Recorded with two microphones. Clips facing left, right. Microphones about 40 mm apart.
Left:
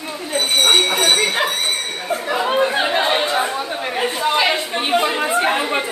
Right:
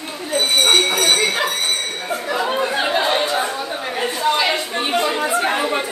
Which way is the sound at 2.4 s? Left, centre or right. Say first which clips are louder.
Left 4 dB; centre.